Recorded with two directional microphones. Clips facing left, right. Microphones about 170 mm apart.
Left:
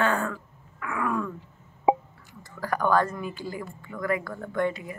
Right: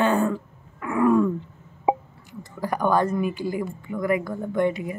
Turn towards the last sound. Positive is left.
turn(degrees=-20)  # may be behind; listen again after turning